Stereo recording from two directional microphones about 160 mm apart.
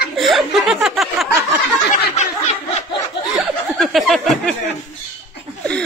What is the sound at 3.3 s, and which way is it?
Chuckle, centre (ahead or behind).